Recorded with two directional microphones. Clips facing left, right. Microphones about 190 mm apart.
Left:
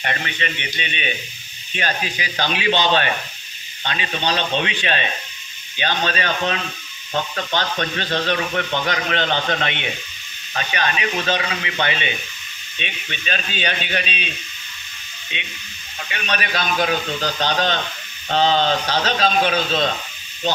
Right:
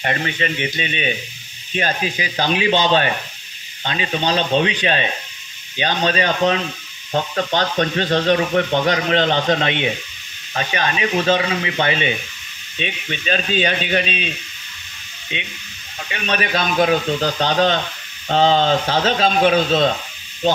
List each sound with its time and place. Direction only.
0.0 s a man's voice: 35° right (ahead or behind)
16.1 s a man's voice: 30° right (ahead or behind)